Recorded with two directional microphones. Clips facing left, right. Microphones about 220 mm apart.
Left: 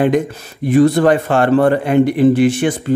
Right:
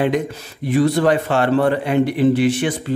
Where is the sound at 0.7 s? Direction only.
50° left (ahead or behind).